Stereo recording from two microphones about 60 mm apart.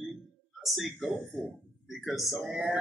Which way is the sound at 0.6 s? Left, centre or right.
Centre.